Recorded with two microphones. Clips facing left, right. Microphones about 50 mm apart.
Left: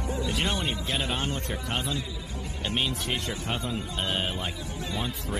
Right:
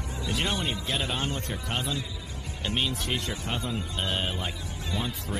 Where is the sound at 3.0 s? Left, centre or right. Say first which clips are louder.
Even; left.